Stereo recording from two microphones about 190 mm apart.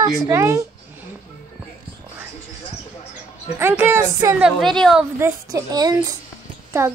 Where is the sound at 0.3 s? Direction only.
15° right (ahead or behind).